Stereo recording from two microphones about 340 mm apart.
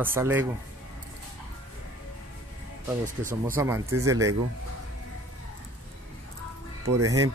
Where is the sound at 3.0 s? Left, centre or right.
Right.